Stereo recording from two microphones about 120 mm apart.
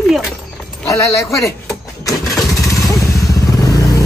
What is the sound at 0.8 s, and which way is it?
Speech, 25° left (ahead or behind).